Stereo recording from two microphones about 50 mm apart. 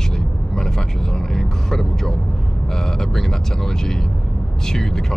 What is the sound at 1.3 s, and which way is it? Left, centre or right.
Speech, centre.